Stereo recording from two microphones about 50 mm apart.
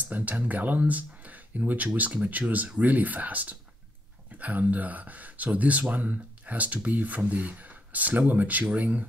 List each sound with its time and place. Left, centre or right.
0.0 s speech: right